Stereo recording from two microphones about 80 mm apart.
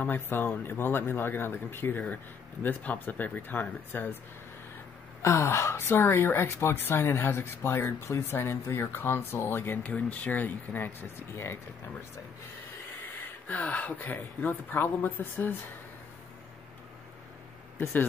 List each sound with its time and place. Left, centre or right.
0.0 s speech: left
5.2 s a woman's voice: left
13.5 s speech: centre